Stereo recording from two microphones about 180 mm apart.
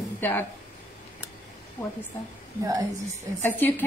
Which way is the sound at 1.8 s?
10° left (ahead or behind).